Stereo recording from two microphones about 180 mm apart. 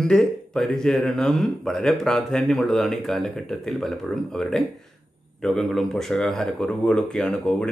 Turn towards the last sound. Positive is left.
turn(degrees=5)  # may be behind; listen again after turning